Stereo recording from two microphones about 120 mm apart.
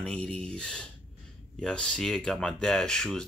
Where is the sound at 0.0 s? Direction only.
5° left (ahead or behind).